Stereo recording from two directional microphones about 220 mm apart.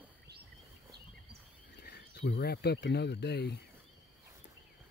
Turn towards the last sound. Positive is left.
turn(degrees=50)  # may be behind; listen again after turning